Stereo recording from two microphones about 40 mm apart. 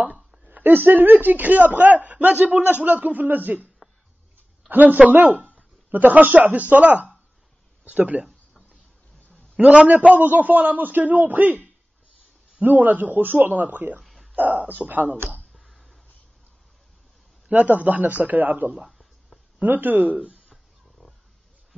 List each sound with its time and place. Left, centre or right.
0.5 s speech: right
4.6 s speech: right
9.8 s speech: right
12.6 s speech: right
14.0 s a sound: centre
14.3 s speech: right
15.5 s a sound: centre
17.5 s speech: right
18.9 s a sound: centre
19.6 s speech: right
20.2 s a sound: right
21.0 s wild animals: left